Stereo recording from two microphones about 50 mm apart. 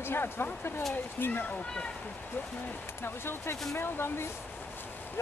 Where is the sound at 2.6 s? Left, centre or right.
Left.